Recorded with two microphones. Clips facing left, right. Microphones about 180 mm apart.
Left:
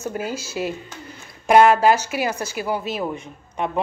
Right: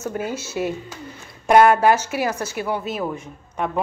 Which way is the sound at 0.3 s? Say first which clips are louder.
Right 1 dB; 20° right (ahead or behind).